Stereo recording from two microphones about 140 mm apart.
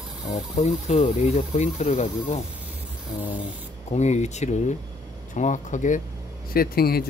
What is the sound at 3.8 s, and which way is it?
Speech, 55° left (ahead or behind).